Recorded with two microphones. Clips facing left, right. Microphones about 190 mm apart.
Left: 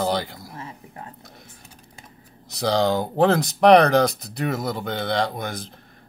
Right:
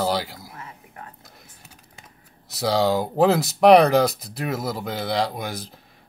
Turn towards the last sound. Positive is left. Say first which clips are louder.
# even
turn(degrees=-5)  # may be behind; listen again after turning